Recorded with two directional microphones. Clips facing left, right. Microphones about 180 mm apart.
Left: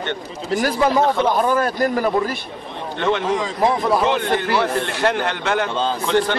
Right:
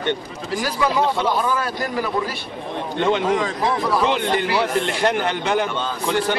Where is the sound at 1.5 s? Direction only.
45° left (ahead or behind).